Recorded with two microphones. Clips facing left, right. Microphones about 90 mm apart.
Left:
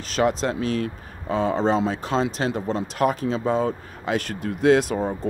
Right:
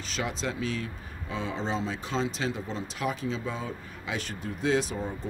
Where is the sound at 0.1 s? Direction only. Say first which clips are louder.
Left 11 dB; 50° left (ahead or behind).